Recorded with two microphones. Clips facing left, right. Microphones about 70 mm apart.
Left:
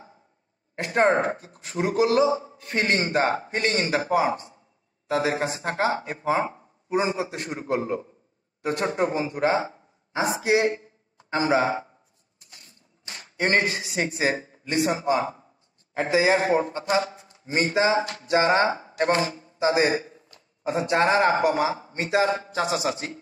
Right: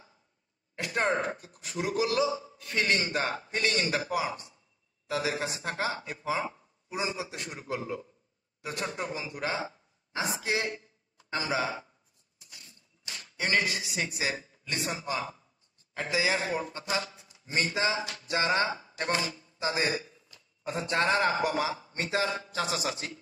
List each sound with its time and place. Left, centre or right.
0.7 s a man's voice: left